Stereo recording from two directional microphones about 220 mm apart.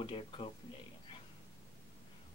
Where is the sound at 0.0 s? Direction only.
25° left (ahead or behind).